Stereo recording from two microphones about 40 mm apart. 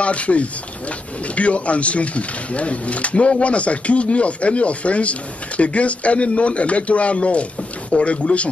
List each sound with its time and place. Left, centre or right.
0.0 s speech: left